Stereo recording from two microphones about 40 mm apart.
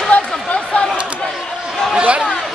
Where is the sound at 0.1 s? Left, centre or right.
Left.